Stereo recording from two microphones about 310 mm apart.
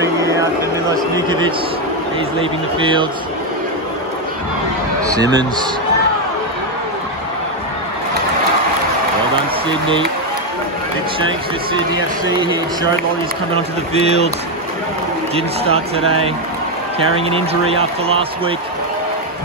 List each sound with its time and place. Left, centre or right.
0.0 s a sound: centre
1.1 s speech: centre
2.8 s speech: centre
5.0 s speech: centre
11.1 s speech: centre
14.0 s speech: centre
15.3 s speech: centre
17.2 s speech: centre